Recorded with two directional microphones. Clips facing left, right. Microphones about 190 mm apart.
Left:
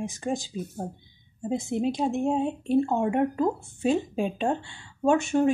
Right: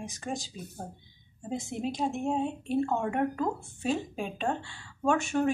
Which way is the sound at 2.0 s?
25° left (ahead or behind).